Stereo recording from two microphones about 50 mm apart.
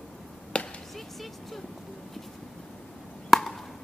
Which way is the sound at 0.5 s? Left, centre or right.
Left.